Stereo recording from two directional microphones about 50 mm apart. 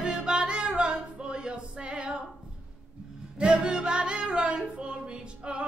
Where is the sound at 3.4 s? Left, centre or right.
Centre.